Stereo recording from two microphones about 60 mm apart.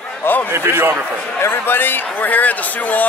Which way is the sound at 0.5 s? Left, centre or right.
Right.